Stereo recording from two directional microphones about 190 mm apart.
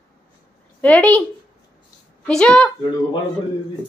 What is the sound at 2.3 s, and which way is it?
Speech, 5° left (ahead or behind).